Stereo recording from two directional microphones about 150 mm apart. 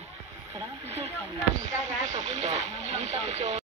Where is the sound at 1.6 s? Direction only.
55° right (ahead or behind).